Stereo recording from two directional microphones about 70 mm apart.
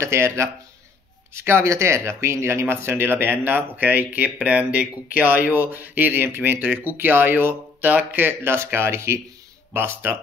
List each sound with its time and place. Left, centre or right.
0.0 s speech: right